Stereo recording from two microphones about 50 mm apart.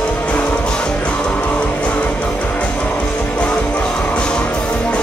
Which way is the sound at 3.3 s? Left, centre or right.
Left.